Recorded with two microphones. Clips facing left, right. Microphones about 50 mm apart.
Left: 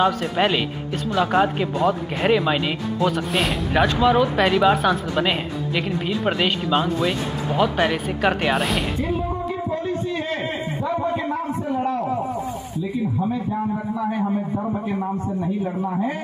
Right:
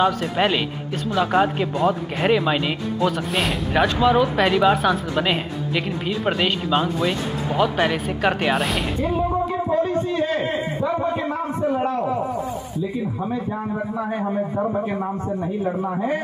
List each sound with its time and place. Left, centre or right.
0.0 s a man's voice: centre
9.7 s a sound: right
14.5 s a man's voice: right